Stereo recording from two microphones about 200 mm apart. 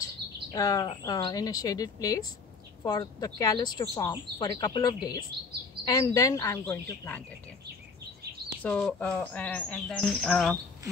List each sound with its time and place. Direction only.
0.0 s a woman's voice: 15° left (ahead or behind)
8.6 s bird: 5° left (ahead or behind)